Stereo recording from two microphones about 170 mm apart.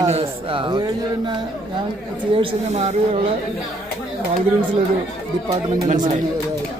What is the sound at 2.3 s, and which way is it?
Speech, 40° right (ahead or behind).